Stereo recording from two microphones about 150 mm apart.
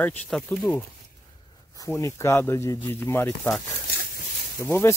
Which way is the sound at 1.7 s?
20° left (ahead or behind).